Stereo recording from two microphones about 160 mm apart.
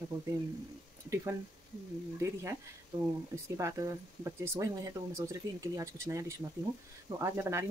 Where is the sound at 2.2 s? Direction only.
20° right (ahead or behind).